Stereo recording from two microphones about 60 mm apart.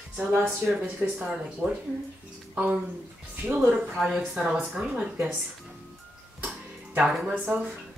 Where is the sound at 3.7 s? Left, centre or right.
Centre.